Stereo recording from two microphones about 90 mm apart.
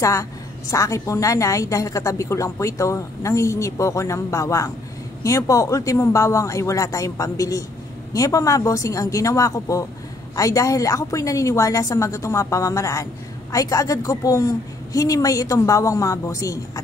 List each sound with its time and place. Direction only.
0.0 s a woman's voice: 35° left (ahead or behind)